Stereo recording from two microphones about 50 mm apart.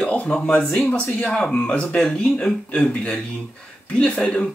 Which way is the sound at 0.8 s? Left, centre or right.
Left.